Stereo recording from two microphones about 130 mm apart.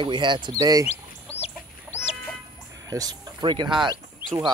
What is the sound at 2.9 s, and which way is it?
Speech, 30° right (ahead or behind).